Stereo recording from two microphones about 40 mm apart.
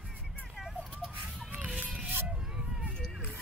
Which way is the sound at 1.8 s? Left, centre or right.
Right.